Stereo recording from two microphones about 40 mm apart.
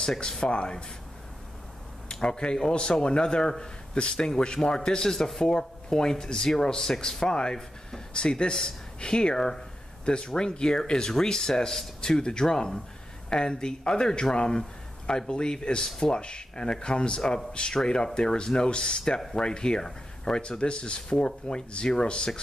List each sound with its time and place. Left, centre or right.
0.0 s speech: centre
2.1 s speech: centre